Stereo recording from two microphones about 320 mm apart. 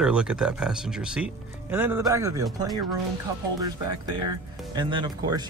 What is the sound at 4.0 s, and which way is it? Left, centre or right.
Speech, centre.